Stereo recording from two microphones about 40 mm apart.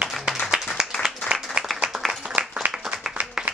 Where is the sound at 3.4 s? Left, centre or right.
Centre.